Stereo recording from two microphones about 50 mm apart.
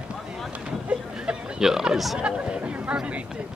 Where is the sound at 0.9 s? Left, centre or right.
Right.